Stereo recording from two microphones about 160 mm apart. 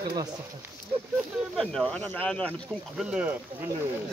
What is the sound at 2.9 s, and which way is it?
Speech, 5° right (ahead or behind).